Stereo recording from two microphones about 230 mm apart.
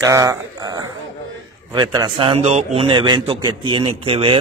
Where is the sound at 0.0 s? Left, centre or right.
Centre.